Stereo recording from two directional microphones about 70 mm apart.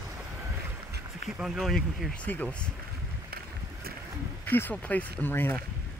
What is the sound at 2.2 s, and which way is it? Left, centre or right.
Speech, left.